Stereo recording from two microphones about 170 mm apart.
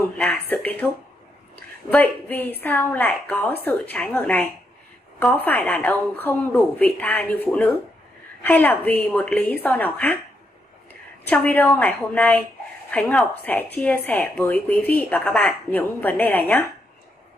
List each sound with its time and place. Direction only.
0.0 s a woman's voice: 10° left (ahead or behind)
1.9 s a woman's voice: 10° left (ahead or behind)
11.2 s a woman's voice: 10° left (ahead or behind)